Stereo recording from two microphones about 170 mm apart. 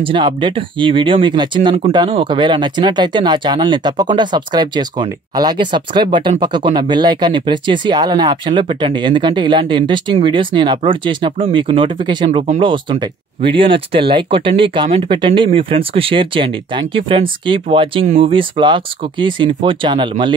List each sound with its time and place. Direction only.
0.0 s speech: 30° right (ahead or behind)
12.3 s speech: 40° right (ahead or behind)